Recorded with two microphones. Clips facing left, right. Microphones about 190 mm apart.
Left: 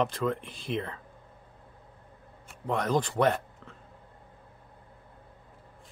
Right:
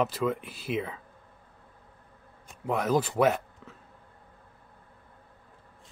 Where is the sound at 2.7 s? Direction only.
5° right (ahead or behind).